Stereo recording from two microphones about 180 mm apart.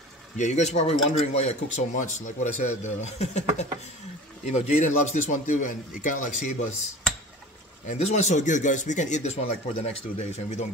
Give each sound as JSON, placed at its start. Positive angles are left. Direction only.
{"t": 0.4, "sound": "speech", "side_deg": 40}
{"t": 4.5, "sound": "speech", "side_deg": 40}
{"t": 7.8, "sound": "speech", "side_deg": 40}